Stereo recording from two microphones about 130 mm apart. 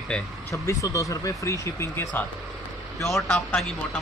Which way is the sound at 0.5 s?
25° left (ahead or behind).